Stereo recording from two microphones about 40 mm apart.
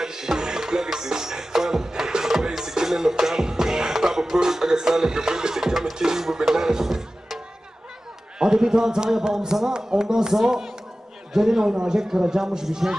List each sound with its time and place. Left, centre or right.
0.0 s music: centre
8.4 s a man's voice: centre